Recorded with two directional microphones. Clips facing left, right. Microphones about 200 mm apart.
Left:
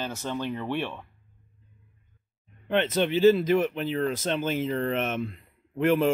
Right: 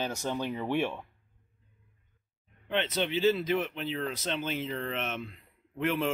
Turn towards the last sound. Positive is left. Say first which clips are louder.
# left 7 dB
turn(degrees=45)  # may be behind; listen again after turning